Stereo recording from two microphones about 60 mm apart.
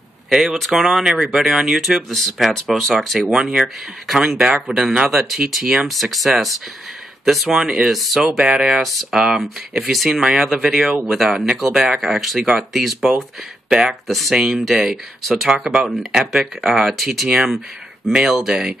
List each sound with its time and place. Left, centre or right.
0.3 s speech: centre
7.5 s speech: centre
13.7 s speech: centre
14.0 s speech: centre
14.3 s speech: centre
15.2 s speech: centre